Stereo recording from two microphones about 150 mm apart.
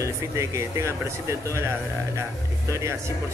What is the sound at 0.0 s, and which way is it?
Speech, 20° right (ahead or behind).